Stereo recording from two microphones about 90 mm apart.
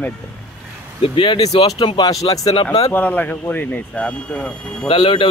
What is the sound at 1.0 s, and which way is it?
Speech, 80° left.